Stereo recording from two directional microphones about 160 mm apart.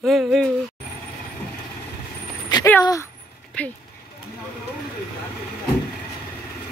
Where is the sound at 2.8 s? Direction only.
20° left (ahead or behind).